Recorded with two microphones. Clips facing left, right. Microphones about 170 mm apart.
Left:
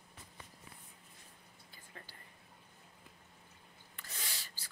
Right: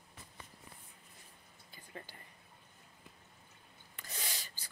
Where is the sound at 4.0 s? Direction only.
15° right (ahead or behind).